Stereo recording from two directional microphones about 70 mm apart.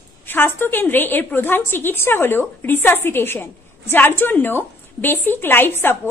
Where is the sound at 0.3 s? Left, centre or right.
Left.